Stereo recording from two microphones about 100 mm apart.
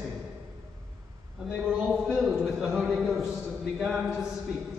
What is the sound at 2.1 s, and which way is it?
A man's voice, centre (ahead or behind).